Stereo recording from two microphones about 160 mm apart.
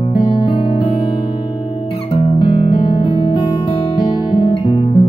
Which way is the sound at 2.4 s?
35° left (ahead or behind).